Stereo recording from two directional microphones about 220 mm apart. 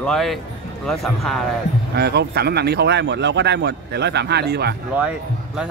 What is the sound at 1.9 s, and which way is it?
Speech, 50° right (ahead or behind).